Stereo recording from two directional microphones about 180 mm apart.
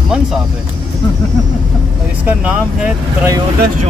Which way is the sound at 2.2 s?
5° right (ahead or behind).